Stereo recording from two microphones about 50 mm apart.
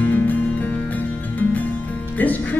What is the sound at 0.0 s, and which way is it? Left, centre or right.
Music, left.